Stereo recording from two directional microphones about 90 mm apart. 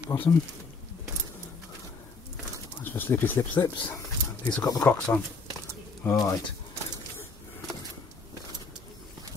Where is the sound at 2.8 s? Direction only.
20° left (ahead or behind).